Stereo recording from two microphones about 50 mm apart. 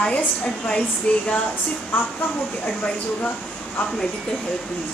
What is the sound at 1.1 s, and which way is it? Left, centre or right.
A woman's voice, left.